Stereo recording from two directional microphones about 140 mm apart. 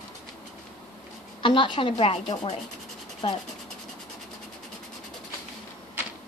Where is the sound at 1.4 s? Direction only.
35° left (ahead or behind).